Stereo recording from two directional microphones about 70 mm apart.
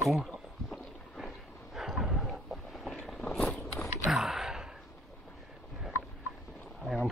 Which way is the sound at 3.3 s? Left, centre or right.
Left.